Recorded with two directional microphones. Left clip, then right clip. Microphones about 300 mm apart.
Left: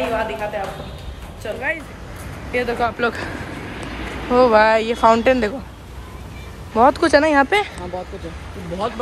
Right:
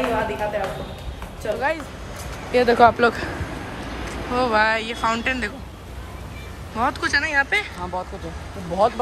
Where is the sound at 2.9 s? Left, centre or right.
Centre.